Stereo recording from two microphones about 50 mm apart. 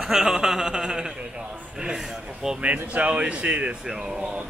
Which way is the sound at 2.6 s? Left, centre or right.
Right.